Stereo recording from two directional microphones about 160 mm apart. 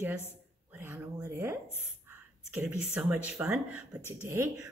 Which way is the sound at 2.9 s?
5° right (ahead or behind).